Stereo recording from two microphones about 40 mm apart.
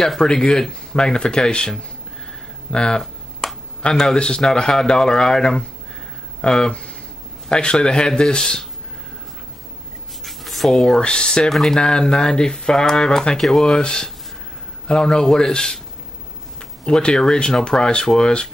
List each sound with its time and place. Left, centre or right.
0.2 s speech: left
2.7 s a sound: left
3.9 s speech: centre
10.2 s writing: centre
10.7 s speech: centre
16.8 s speech: left